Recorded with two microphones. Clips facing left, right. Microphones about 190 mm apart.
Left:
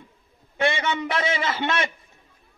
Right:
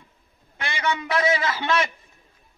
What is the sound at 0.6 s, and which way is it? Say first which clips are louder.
A man's voice: left 4 dB; 25° left (ahead or behind).